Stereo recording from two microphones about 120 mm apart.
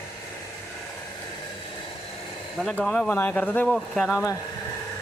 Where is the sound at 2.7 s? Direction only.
5° left (ahead or behind).